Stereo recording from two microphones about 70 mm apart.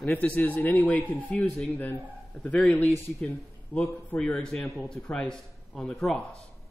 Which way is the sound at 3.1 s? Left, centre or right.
Centre.